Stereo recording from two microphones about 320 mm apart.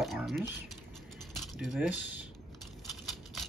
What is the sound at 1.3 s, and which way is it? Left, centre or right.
Keys jangling, centre.